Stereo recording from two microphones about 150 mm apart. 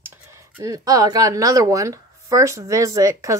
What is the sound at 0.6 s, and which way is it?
Speech, 25° right (ahead or behind).